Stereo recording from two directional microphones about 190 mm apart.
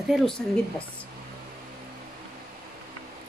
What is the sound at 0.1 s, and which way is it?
Speech, 5° right (ahead or behind).